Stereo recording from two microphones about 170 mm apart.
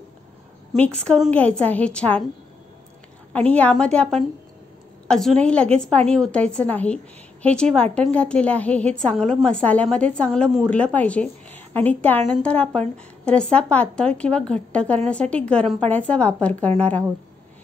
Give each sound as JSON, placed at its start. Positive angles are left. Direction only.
{"t": 0.7, "sound": "a woman's voice", "side_deg": 5}
{"t": 3.3, "sound": "a woman's voice", "side_deg": 10}